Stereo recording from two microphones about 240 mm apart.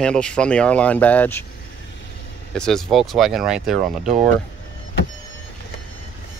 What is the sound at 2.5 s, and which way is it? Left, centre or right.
Speech, centre.